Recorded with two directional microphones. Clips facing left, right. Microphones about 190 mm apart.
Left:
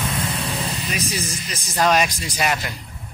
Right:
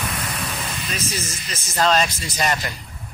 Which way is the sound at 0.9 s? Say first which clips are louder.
Even; 15° left (ahead or behind).